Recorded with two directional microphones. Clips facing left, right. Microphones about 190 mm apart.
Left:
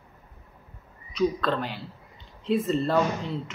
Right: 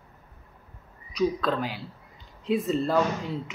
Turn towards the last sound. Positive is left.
turn(degrees=0)  # may be behind; listen again after turning